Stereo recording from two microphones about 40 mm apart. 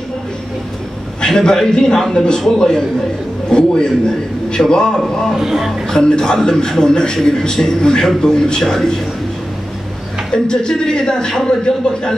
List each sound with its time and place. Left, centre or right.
1.2 s a man's voice: centre
3.4 s a man's voice: left
5.3 s speech: centre
5.9 s a man's voice: centre
10.3 s a man's voice: centre